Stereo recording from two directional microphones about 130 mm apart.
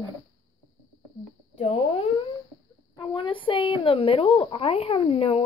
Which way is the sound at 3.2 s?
40° left (ahead or behind).